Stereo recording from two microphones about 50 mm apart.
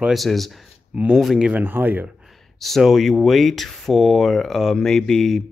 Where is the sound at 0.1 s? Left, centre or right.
Centre.